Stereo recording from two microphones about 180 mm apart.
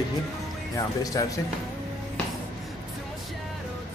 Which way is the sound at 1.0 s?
20° left (ahead or behind).